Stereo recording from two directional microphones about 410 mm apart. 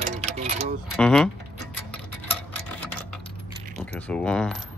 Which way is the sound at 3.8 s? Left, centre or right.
Centre.